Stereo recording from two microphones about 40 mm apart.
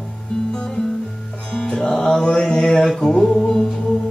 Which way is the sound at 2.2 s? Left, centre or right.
Left.